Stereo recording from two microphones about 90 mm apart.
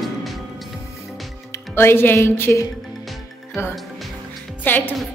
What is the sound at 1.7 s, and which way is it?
A woman's voice, 25° left (ahead or behind).